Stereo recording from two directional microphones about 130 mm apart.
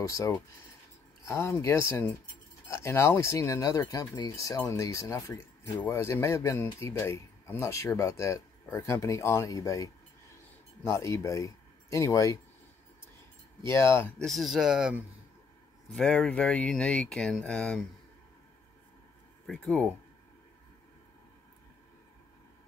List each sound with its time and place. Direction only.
0.0 s speech: 25° left (ahead or behind)
13.7 s speech: 20° left (ahead or behind)
14.1 s speech: centre (ahead or behind)
19.4 s speech: 5° left (ahead or behind)